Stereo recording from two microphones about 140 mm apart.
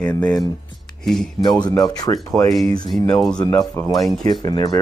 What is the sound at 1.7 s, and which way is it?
Speech, 25° left (ahead or behind).